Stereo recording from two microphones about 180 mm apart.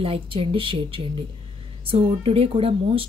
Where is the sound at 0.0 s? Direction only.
30° right (ahead or behind).